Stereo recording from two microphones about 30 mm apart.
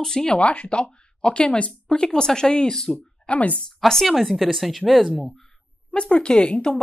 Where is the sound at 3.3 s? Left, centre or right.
Left.